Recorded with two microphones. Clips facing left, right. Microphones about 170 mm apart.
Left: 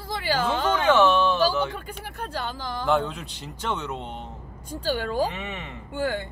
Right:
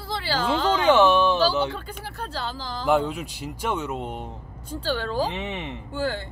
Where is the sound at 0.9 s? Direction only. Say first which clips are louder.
Right 2 dB; 15° right (ahead or behind).